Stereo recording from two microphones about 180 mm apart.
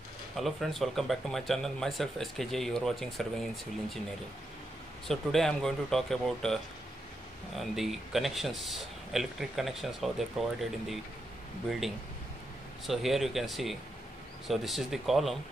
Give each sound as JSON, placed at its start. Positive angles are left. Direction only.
{"t": 0.4, "sound": "speech", "side_deg": 0}
{"t": 5.0, "sound": "speech", "side_deg": 0}
{"t": 12.8, "sound": "speech", "side_deg": 0}